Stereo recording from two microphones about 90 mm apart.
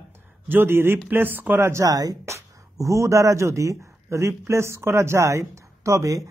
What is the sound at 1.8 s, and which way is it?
A man's voice, 45° right (ahead or behind).